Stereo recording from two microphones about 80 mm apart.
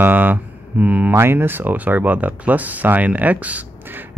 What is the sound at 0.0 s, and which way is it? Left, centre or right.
Speech, right.